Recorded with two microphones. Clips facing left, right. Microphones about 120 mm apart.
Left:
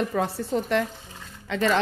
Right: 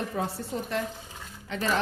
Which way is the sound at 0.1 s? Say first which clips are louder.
Left 6 dB; 80° left.